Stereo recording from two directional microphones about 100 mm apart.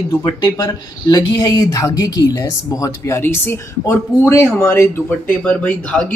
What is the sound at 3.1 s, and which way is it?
Speech, 25° left (ahead or behind).